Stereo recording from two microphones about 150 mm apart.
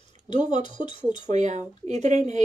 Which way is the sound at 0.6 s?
35° left (ahead or behind).